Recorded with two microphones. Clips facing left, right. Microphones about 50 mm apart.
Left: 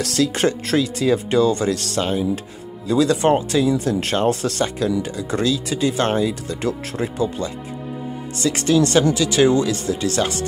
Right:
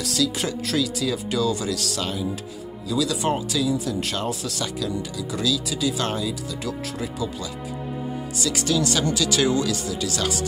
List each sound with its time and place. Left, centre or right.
0.0 s speech: left
0.7 s speech: left